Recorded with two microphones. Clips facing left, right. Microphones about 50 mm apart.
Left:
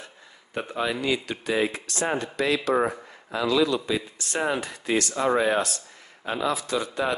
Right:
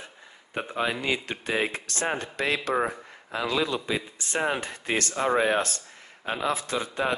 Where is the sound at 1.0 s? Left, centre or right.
Right.